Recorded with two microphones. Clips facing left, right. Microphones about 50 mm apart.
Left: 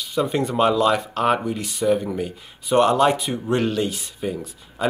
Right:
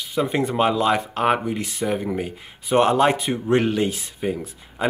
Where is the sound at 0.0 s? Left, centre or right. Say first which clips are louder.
Even; right.